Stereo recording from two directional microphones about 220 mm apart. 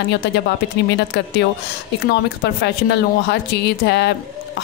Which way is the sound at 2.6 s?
50° left (ahead or behind).